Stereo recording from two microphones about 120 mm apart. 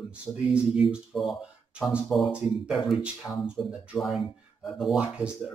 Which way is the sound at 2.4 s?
10° right (ahead or behind).